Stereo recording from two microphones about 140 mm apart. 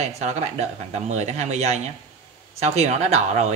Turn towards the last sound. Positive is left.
turn(degrees=-55)  # may be behind; listen again after turning